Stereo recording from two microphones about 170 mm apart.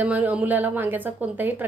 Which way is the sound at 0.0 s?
10° right (ahead or behind).